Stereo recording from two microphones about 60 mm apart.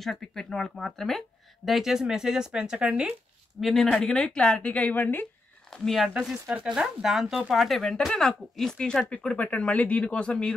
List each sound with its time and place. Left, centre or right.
0.0 s speech: centre
1.7 s speech: centre
3.6 s speech: centre; by 5.2 s left
5.7 s speech: centre
6.0 s speech: centre